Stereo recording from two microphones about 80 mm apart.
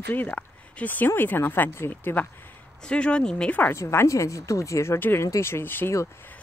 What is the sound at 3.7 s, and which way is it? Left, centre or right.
Speech, left.